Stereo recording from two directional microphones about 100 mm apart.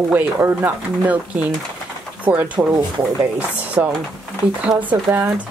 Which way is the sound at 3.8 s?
20° right (ahead or behind).